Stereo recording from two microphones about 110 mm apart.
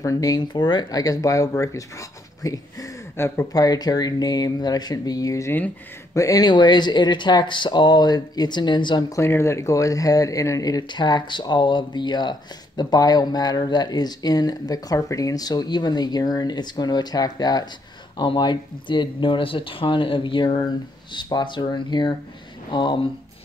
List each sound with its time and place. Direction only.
0.0 s speech: 30° left (ahead or behind)
3.5 s speech: 35° left (ahead or behind)
9.1 s speech: 25° left (ahead or behind); by 23.0 s 45° left (ahead or behind)